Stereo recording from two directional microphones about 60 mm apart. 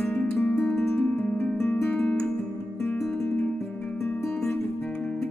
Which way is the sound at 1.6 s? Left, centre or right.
Left.